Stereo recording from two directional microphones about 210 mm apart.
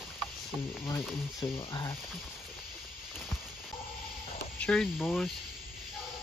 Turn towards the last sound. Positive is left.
turn(degrees=5)  # may be behind; listen again after turning